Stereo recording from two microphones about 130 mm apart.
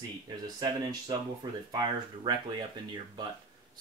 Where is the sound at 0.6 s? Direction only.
35° right (ahead or behind).